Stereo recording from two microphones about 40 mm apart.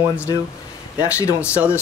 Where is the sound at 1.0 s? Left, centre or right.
Right.